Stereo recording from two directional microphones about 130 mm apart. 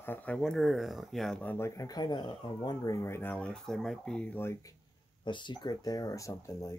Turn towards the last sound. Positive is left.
turn(degrees=25)  # may be behind; listen again after turning